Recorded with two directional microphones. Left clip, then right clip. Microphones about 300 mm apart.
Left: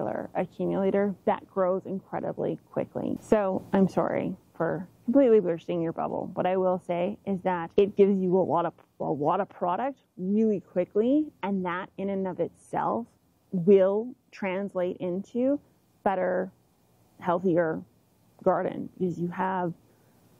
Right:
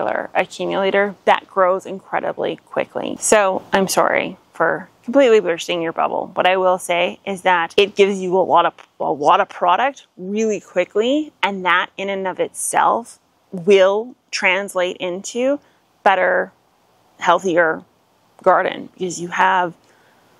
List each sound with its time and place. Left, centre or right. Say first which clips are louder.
0.0 s speech: right 11 dB; centre
8.9 s speech: right 10 dB; right
9.2 s speech: right 13 dB; centre